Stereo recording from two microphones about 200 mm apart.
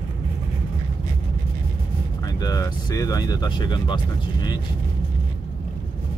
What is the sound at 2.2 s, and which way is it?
Speech, 20° left (ahead or behind).